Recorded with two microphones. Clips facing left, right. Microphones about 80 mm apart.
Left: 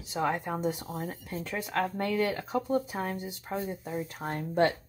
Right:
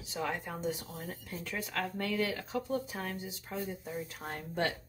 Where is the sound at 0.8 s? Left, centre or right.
Left.